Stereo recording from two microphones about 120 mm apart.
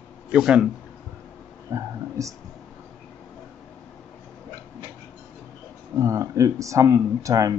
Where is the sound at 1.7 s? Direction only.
25° right (ahead or behind).